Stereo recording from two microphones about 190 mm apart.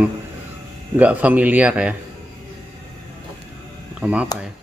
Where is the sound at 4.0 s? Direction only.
5° right (ahead or behind).